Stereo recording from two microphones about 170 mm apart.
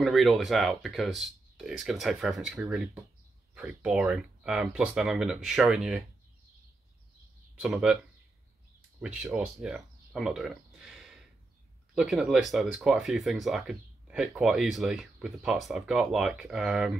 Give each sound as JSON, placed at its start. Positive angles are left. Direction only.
{"t": 0.0, "sound": "speech", "side_deg": 0}
{"t": 7.6, "sound": "speech", "side_deg": -5}
{"t": 9.0, "sound": "speech", "side_deg": -5}